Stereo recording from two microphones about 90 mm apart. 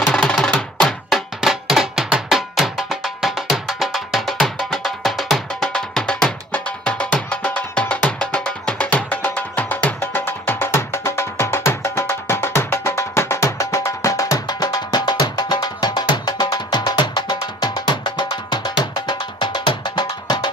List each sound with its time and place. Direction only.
0.0 s music: 10° left (ahead or behind); by 20.3 s 55° left (ahead or behind)